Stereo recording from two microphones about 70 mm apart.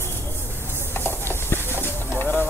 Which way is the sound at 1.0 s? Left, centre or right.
Left.